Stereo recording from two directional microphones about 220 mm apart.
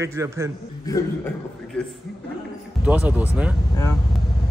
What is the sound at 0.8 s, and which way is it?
Speech, 15° left (ahead or behind).